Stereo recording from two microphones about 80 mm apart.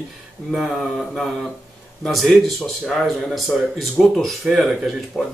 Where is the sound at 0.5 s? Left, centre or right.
Centre.